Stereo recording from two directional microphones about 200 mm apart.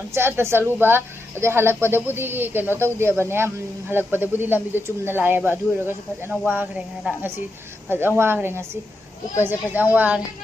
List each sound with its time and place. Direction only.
0.1 s speech: 15° right (ahead or behind)